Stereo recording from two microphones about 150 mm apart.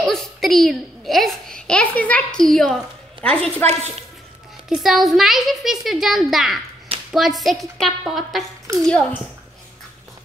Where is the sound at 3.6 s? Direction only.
45° right (ahead or behind).